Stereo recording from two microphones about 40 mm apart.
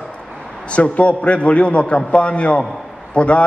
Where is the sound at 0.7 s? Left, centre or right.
Left.